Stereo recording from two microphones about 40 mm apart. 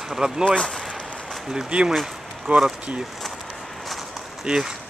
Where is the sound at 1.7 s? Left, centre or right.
Right.